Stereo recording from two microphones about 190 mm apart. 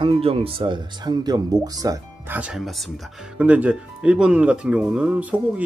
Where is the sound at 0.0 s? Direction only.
30° right (ahead or behind).